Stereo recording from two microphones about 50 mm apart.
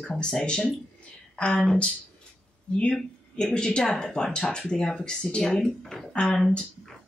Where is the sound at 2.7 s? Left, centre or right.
Centre.